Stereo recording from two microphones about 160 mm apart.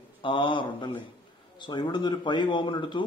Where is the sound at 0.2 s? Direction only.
30° left (ahead or behind).